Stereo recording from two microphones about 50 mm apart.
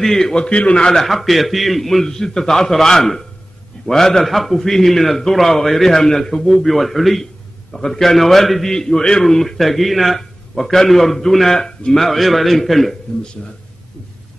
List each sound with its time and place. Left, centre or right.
0.0 s a man's voice: centre
0.5 s a man's voice: left
1.0 s a man's voice: centre